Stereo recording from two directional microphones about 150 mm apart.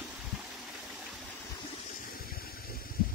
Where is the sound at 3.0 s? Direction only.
75° left (ahead or behind).